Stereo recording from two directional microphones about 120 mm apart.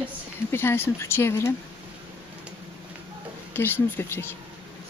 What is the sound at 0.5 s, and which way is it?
Speech, 20° left (ahead or behind).